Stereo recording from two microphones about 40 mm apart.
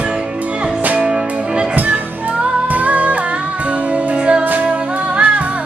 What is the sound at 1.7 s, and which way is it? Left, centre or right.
Music, right.